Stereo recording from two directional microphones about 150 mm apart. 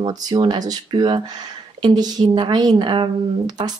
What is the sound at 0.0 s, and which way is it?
Speech, 25° right (ahead or behind).